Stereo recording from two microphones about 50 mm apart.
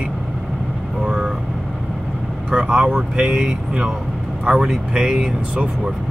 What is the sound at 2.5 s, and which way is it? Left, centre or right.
Speech, centre.